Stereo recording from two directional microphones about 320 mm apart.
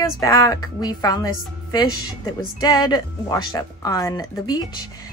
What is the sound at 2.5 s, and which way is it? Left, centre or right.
Speech, centre.